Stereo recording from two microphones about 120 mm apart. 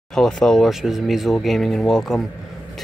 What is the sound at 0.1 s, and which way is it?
Speech, 5° left (ahead or behind).